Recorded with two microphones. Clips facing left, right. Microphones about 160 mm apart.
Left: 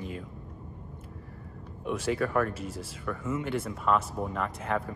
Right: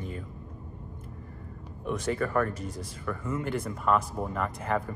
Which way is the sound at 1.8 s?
5° left (ahead or behind).